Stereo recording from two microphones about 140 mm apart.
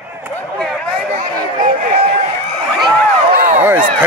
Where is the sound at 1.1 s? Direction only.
70° right (ahead or behind).